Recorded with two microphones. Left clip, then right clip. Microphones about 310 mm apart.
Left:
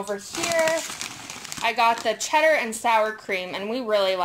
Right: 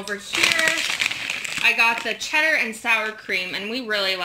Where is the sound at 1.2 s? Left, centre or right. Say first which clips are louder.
Right 2 dB; left.